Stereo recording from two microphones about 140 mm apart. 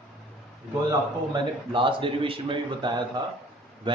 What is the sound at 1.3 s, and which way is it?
A man's voice, 35° right (ahead or behind).